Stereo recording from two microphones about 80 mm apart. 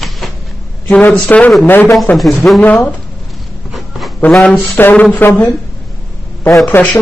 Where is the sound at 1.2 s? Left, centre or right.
Centre.